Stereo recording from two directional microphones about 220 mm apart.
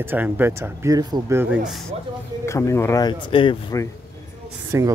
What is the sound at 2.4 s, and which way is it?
Speech, 15° left (ahead or behind).